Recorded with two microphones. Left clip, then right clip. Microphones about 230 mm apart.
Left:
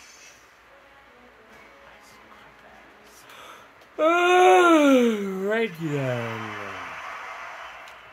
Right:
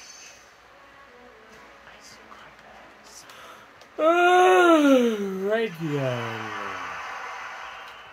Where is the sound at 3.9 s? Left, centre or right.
Left.